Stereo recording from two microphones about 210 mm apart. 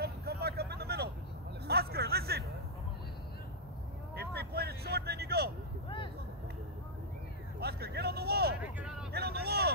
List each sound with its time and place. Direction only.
0.0 s vehicle: 50° right (ahead or behind)
1.7 s hubbub: 50° right (ahead or behind)
4.1 s vehicle: 50° right (ahead or behind)
7.6 s a sound: 50° right (ahead or behind)
9.1 s vehicle: 50° right (ahead or behind)